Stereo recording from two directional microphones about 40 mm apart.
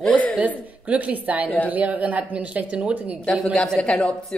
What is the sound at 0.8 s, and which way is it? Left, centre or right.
A woman's voice, right.